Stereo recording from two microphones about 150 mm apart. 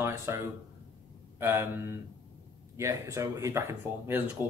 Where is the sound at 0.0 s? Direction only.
15° right (ahead or behind).